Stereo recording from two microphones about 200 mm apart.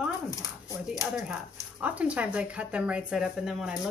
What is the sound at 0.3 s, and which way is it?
Speech, 15° left (ahead or behind).